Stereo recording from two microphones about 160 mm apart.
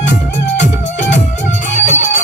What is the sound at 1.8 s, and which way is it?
Music, 50° left (ahead or behind).